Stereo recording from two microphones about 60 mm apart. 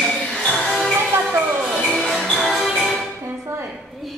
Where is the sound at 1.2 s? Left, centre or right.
Right.